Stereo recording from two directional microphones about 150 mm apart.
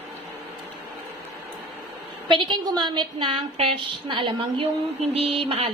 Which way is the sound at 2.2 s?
30° right (ahead or behind).